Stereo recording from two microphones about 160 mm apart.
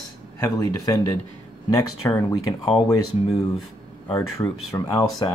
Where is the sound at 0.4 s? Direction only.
20° left (ahead or behind).